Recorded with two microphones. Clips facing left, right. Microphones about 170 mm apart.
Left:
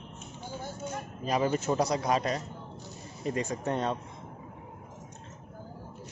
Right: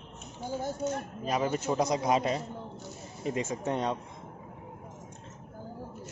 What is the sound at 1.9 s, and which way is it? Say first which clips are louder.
Speech: right 1 dB; 20° right (ahead or behind).